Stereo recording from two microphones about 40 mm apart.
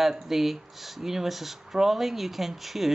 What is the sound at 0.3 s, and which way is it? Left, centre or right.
Speech, centre.